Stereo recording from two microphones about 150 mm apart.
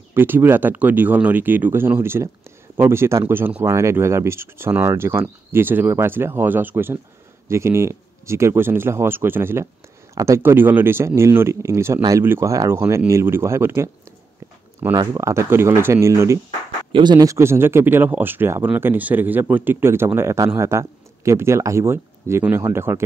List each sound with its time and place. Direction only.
0.1 s speech: 15° right (ahead or behind)
15.0 s speech: 20° right (ahead or behind)
16.9 s speech: 30° right (ahead or behind)